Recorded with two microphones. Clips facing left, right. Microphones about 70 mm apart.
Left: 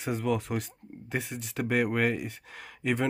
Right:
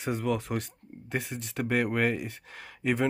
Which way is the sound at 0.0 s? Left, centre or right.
Centre.